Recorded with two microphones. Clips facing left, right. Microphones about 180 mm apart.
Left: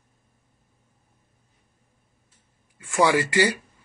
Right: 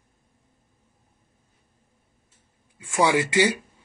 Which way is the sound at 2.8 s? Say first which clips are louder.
Left 1 dB; 20° right (ahead or behind).